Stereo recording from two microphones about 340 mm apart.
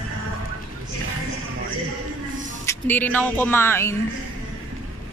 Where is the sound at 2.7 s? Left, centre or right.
Centre.